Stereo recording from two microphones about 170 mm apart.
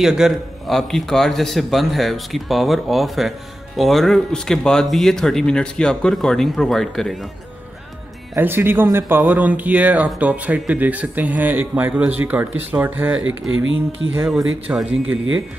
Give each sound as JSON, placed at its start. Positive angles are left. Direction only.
{"t": 0.0, "sound": "a man's voice", "side_deg": 0}
{"t": 8.4, "sound": "speech", "side_deg": -15}
{"t": 14.2, "sound": "a man's voice", "side_deg": 0}